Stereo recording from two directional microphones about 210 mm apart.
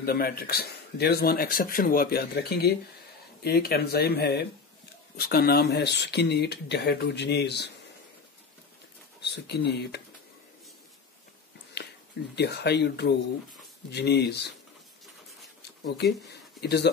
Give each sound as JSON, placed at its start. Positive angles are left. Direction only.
{"t": 0.0, "sound": "speech", "side_deg": 45}
{"t": 9.2, "sound": "speech", "side_deg": 50}
{"t": 12.4, "sound": "speech", "side_deg": 50}
{"t": 16.3, "sound": "speech", "side_deg": 50}